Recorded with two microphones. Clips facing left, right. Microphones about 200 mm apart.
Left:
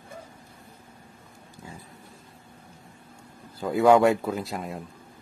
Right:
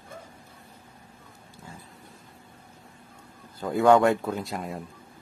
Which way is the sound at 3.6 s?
Centre (ahead or behind).